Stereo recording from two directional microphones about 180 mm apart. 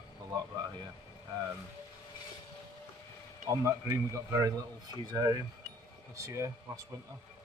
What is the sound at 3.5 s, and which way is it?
Speech, 15° right (ahead or behind).